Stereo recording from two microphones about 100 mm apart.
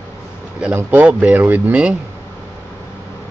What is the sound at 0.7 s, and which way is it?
Speech, 15° right (ahead or behind).